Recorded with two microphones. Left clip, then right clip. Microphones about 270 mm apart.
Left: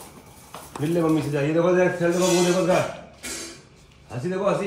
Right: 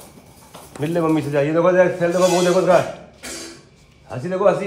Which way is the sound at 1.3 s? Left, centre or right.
Right.